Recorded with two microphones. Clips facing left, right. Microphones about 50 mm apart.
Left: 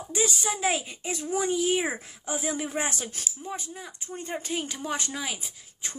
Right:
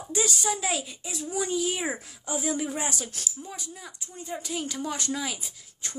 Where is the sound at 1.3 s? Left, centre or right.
Left.